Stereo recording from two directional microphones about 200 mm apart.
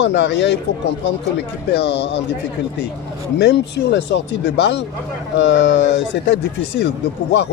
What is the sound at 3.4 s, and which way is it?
Speech, 55° left (ahead or behind).